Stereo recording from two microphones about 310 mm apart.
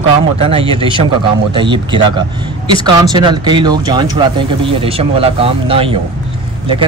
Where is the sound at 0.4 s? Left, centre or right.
Centre.